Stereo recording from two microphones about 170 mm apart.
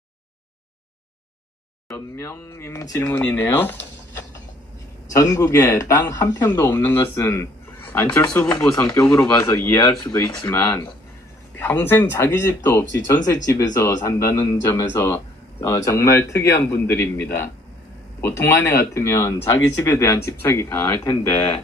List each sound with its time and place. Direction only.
1.9 s speech: 15° left (ahead or behind)
5.1 s speech: 20° left (ahead or behind)